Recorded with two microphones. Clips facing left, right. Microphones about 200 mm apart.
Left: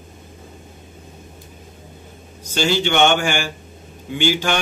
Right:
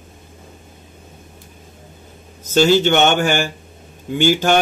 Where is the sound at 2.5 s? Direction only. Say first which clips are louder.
Right 6 dB; 45° right (ahead or behind).